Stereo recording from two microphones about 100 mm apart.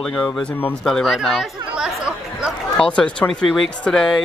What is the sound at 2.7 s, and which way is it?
Speech, 10° left (ahead or behind).